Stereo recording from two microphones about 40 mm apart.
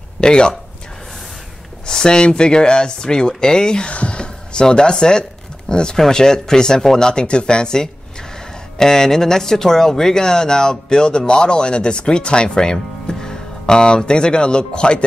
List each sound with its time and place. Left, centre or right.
0.2 s speech: left
1.9 s speech: centre
3.9 s speech: left